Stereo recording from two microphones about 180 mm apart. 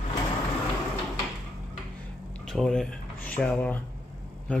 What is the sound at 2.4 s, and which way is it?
A man's voice, 5° left (ahead or behind).